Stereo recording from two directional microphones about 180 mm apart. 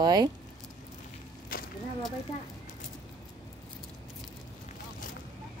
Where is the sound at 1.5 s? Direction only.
55° left (ahead or behind).